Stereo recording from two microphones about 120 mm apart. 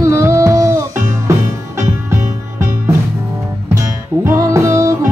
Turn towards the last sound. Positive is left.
turn(degrees=-25)  # may be behind; listen again after turning